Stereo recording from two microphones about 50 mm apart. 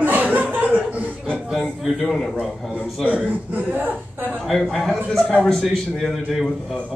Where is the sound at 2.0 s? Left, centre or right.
Centre.